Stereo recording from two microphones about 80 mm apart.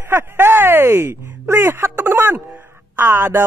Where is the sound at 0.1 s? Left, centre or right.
Right.